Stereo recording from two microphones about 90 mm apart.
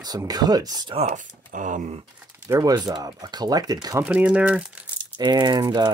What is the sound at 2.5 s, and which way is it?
Speech, 40° right (ahead or behind).